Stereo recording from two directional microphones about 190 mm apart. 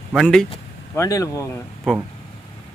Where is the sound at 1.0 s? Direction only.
15° left (ahead or behind).